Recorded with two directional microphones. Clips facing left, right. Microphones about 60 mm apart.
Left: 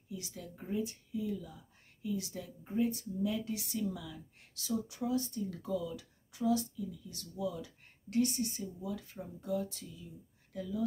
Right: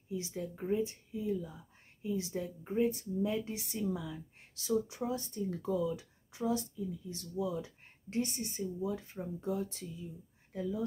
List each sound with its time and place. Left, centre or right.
0.1 s speech: right